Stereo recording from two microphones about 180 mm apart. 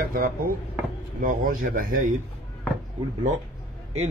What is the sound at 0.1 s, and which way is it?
Speech, 50° right (ahead or behind).